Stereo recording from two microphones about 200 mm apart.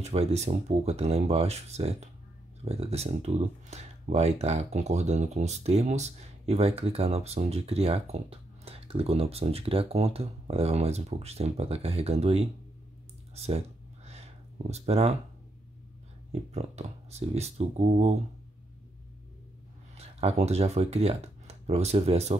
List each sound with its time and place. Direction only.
0.0 s speech: 30° right (ahead or behind)
14.0 s a sound: 35° right (ahead or behind)
16.3 s speech: 30° right (ahead or behind)
20.0 s speech: 30° right (ahead or behind)